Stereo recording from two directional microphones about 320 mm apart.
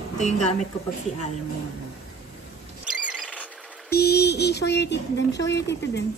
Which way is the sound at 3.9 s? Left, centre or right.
Left.